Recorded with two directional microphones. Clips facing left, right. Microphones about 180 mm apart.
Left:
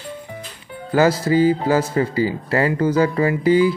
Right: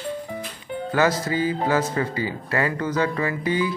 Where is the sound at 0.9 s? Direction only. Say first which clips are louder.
Left 6 dB; 30° left (ahead or behind).